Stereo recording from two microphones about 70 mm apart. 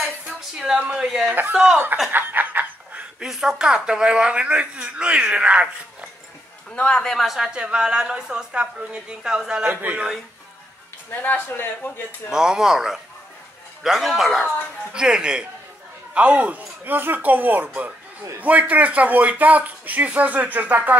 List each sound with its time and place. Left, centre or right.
0.6 s speech: centre
1.2 s speech: right
2.1 s a sound: right
3.3 s speech: centre
6.7 s a man's voice: centre
7.2 s speech: centre
9.7 s speech: right
11.1 s a man's voice: left
12.3 s speech: centre; by 21.0 s right